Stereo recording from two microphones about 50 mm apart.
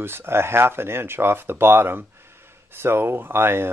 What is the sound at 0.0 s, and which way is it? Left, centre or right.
Speech, right.